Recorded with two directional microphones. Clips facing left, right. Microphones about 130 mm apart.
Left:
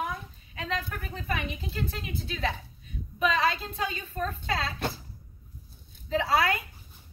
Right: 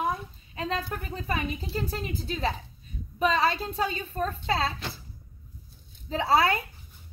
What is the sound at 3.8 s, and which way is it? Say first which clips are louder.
Speech: right 3 dB; 30° right (ahead or behind).